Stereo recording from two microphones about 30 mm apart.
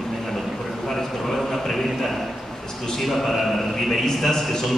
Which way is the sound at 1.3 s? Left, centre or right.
Centre.